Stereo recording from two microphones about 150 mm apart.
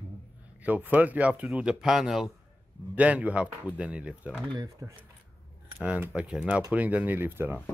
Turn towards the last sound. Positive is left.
turn(degrees=-15)  # may be behind; listen again after turning